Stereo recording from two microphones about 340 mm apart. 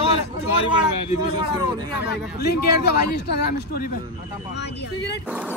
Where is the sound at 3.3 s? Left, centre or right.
Left.